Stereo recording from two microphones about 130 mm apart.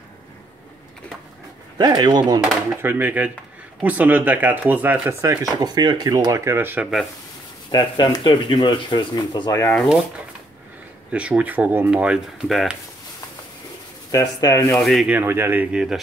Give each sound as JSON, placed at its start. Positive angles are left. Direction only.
{"t": 1.8, "sound": "speech", "side_deg": -35}
{"t": 2.8, "sound": "speech", "side_deg": -15}
{"t": 5.4, "sound": "speech", "side_deg": -30}
{"t": 7.7, "sound": "speech", "side_deg": 35}
{"t": 9.8, "sound": "speech", "side_deg": 0}
{"t": 11.1, "sound": "speech", "side_deg": -10}
{"t": 14.1, "sound": "speech", "side_deg": 25}
{"t": 14.7, "sound": "speech", "side_deg": 0}
{"t": 15.0, "sound": "speech", "side_deg": -15}